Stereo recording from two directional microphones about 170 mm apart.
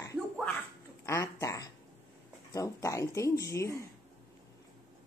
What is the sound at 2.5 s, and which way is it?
Speech, 20° left (ahead or behind).